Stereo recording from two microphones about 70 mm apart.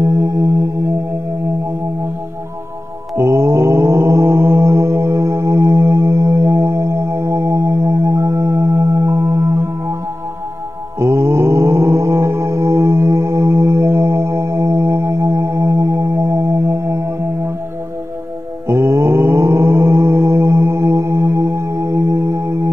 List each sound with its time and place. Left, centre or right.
3.2 s mantra: right
11.0 s mantra: right
16.4 s music: right
18.7 s mantra: right